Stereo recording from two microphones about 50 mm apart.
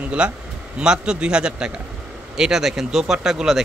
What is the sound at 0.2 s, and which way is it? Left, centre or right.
A man's voice, right.